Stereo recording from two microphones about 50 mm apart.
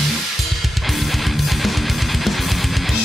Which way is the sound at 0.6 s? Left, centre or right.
Centre.